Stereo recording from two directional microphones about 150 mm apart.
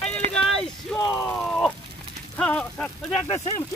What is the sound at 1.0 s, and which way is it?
Speech, 20° left (ahead or behind).